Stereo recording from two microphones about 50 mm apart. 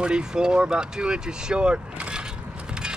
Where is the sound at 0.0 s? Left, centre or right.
Centre.